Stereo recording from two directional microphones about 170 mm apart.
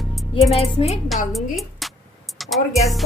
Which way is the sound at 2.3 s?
Centre (ahead or behind).